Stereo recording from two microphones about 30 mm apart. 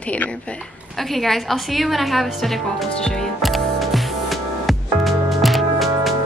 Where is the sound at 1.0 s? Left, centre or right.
Centre.